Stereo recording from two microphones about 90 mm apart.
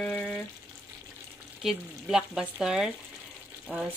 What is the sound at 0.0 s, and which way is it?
Frying, 15° left (ahead or behind).